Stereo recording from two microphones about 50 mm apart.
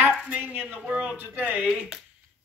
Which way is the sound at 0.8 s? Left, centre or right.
Right.